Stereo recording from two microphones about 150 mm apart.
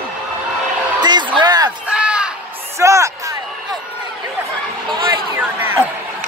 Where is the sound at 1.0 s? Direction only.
30° right (ahead or behind).